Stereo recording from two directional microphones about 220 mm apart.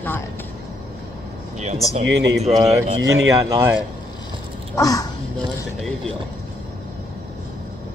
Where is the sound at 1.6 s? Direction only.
30° right (ahead or behind).